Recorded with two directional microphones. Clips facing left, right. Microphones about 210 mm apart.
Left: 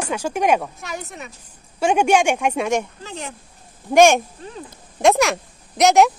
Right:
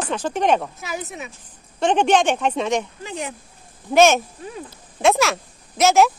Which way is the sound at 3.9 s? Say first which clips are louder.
Left 2 dB; 15° left (ahead or behind).